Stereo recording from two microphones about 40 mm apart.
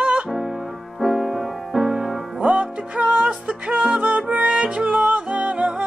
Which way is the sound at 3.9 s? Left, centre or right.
Right.